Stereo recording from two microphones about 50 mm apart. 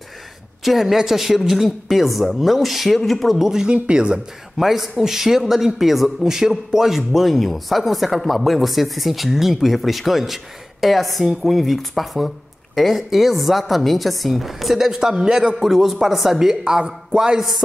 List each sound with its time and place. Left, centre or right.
0.7 s a woman's voice: centre
3.6 s speech: right
4.6 s a woman's voice: centre